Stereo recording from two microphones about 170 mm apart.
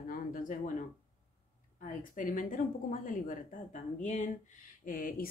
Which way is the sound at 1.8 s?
50° left (ahead or behind).